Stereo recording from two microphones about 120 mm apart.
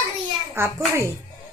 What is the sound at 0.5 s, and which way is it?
Speech, 20° right (ahead or behind).